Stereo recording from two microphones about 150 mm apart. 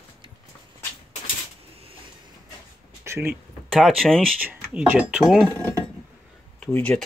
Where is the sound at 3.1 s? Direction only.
15° right (ahead or behind).